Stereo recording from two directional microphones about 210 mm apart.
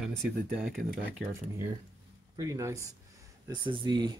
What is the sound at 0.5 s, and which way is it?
Speech, centre (ahead or behind).